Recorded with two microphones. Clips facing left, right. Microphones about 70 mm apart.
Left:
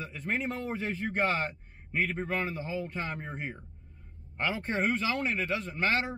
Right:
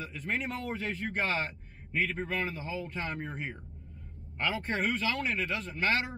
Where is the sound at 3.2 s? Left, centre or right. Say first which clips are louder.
Even; centre.